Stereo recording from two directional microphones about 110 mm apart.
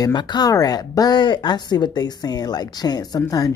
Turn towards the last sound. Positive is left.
turn(degrees=30)  # may be behind; listen again after turning